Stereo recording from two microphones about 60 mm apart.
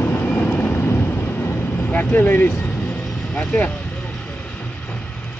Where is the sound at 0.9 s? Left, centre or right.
Left.